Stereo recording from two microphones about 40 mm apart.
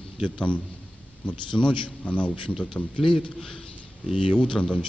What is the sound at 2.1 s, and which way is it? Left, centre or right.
Speech, left.